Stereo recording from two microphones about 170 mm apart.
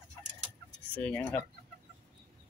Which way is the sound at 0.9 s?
10° left (ahead or behind).